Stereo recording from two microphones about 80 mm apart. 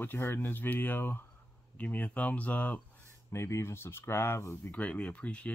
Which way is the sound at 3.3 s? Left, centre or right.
Left.